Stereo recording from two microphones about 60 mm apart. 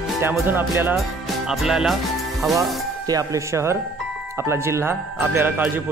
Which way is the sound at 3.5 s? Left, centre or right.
Right.